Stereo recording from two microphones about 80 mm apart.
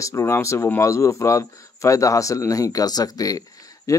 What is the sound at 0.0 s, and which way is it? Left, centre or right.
Speech, left.